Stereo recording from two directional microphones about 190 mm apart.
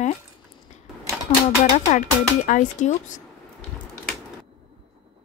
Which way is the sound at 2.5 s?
40° left (ahead or behind).